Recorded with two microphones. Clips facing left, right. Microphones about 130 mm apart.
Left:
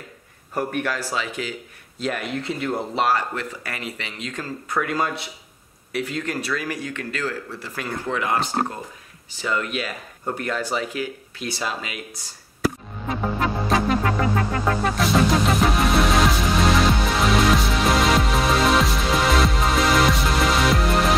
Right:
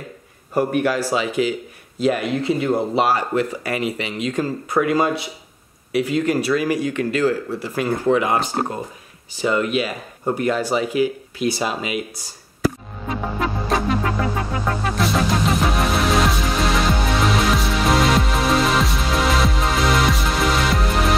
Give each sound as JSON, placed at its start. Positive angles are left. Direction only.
{"t": 0.6, "sound": "speech", "side_deg": -10}
{"t": 13.3, "sound": "music", "side_deg": 0}